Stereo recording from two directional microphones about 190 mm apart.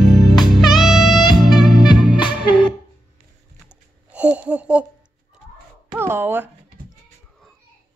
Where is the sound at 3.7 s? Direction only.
5° right (ahead or behind).